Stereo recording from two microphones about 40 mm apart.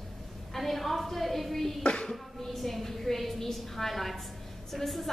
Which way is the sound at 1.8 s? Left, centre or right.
Left.